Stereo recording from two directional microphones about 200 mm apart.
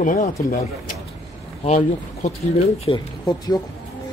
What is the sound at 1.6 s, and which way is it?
Speech, 35° left (ahead or behind).